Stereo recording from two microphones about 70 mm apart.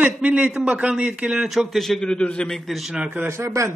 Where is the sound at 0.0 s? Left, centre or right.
Centre.